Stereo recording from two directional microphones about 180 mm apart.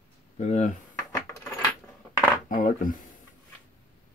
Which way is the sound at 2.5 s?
50° left (ahead or behind).